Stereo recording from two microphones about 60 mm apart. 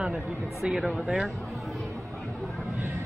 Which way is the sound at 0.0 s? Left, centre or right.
Centre.